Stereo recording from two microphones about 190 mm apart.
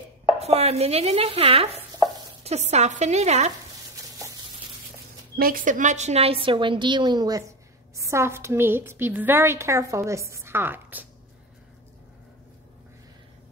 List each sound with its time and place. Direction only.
0.4 s chopping: 35° right (ahead or behind)
5.4 s a woman's voice: 45° right (ahead or behind); by 11.1 s 10° right (ahead or behind)